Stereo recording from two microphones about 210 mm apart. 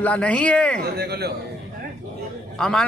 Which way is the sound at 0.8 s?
50° right (ahead or behind).